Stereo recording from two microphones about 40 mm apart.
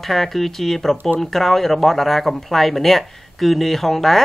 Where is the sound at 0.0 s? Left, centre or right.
Centre.